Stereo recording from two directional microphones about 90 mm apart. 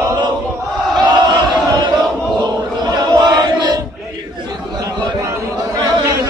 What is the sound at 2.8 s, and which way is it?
Choir, 50° right (ahead or behind).